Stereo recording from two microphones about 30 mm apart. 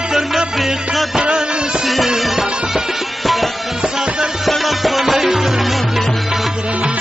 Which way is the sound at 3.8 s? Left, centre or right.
Right.